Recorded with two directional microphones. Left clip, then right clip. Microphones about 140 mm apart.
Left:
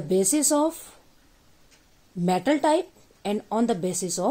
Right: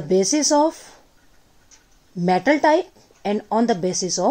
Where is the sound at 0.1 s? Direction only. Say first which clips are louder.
Right 5 dB; 40° right (ahead or behind).